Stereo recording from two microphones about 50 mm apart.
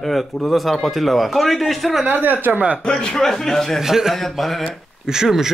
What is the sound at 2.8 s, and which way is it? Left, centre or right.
A man's voice, centre.